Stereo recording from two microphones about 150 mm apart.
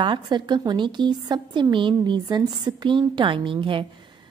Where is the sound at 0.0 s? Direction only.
30° right (ahead or behind).